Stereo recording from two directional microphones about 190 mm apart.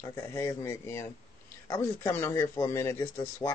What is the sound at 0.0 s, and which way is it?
Speech, 15° left (ahead or behind).